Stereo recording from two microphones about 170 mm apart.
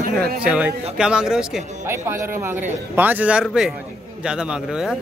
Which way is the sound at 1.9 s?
15° right (ahead or behind).